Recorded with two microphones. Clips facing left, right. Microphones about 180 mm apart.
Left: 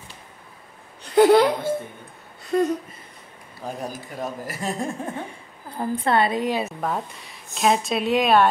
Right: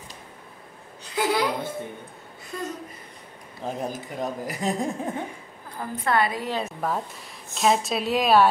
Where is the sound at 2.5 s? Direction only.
65° left (ahead or behind).